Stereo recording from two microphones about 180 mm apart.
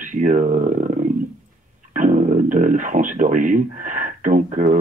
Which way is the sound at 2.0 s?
45° right (ahead or behind).